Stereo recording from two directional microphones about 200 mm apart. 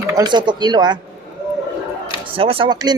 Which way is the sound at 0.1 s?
20° right (ahead or behind).